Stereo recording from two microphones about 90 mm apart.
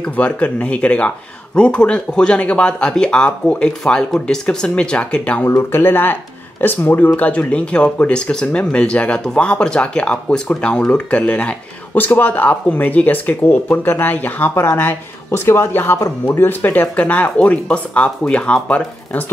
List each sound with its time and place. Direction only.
0.0 s speech: 15° left (ahead or behind)
5.5 s speech: 25° left (ahead or behind)